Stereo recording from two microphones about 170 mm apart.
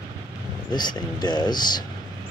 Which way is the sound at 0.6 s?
25° left (ahead or behind).